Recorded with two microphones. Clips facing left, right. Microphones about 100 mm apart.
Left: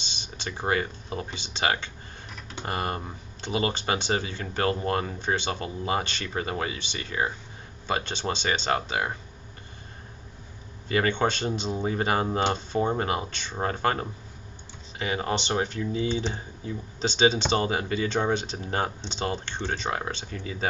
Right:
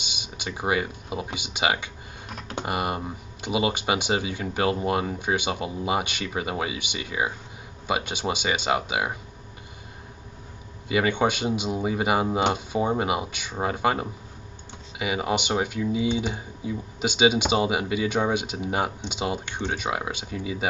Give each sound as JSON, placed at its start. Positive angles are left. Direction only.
{"t": 0.0, "sound": "speech", "side_deg": -10}
{"t": 2.2, "sound": "a sound", "side_deg": -55}
{"t": 2.6, "sound": "speech", "side_deg": -15}
{"t": 10.9, "sound": "speech", "side_deg": -10}